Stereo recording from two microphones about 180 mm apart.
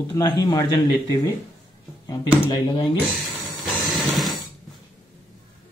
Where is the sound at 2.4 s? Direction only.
25° left (ahead or behind).